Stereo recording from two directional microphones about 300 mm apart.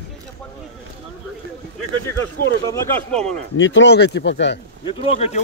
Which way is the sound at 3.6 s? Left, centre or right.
Left.